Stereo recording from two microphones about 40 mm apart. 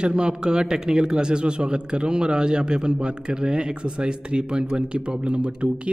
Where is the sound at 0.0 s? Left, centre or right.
Right.